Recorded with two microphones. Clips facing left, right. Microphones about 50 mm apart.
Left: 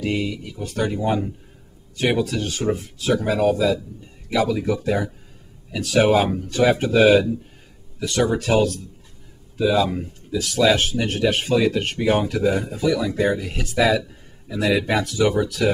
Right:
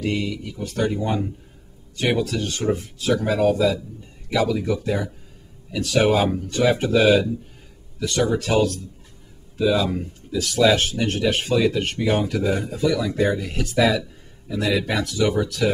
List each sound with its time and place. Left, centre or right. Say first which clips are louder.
0.0 s speech: left 1 dB; centre